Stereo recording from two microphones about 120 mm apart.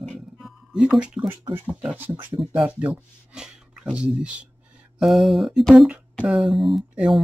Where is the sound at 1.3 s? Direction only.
20° right (ahead or behind).